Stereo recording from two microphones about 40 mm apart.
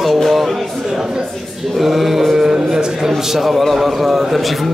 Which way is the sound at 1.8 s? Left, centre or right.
Centre.